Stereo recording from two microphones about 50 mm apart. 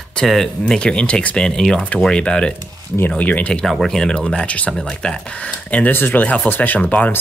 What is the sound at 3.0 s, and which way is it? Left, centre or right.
Speech, left.